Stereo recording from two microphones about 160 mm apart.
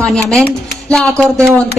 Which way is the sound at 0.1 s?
5° left (ahead or behind).